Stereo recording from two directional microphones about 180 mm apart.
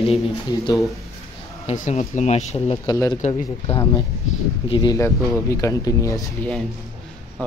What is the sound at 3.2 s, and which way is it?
Speech, 30° left (ahead or behind).